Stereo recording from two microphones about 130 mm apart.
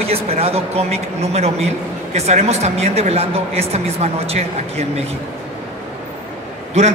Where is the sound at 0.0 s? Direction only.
50° right (ahead or behind).